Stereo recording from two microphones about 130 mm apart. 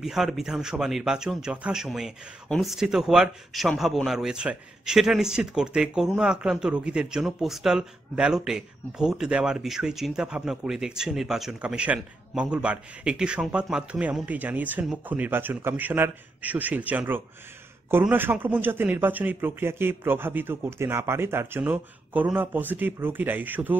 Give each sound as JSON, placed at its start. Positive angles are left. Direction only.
{"t": 0.0, "sound": "a man's voice", "side_deg": -5}